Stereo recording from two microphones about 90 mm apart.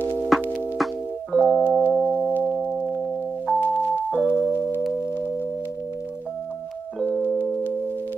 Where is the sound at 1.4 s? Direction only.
15° right (ahead or behind).